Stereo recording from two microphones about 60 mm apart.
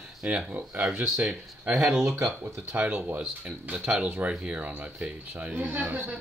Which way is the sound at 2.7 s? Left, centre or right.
Right.